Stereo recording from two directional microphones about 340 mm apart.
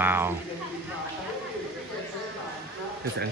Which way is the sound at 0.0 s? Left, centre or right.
Centre.